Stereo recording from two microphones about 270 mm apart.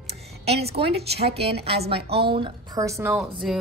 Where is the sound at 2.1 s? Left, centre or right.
Right.